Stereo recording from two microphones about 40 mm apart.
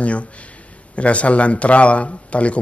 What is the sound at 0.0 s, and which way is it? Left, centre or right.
Speech, left.